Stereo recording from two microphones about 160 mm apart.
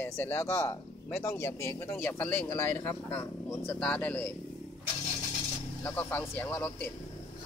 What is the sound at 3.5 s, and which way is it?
Speech, 5° left (ahead or behind).